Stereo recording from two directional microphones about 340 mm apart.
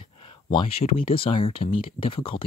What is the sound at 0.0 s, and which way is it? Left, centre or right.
Speech, centre.